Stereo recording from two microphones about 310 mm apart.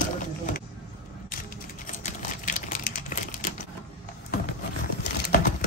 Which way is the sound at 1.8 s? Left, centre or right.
Left.